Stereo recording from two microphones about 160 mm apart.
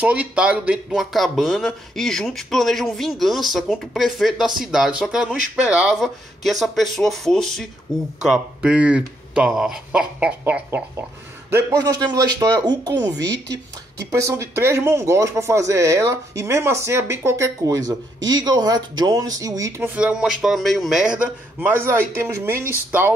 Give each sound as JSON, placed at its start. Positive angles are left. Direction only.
{"t": 0.0, "sound": "speech", "side_deg": -10}
{"t": 11.5, "sound": "a man's voice", "side_deg": -20}
{"t": 14.1, "sound": "speech", "side_deg": -20}